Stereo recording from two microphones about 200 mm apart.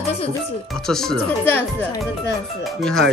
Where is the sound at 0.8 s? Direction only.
Centre (ahead or behind).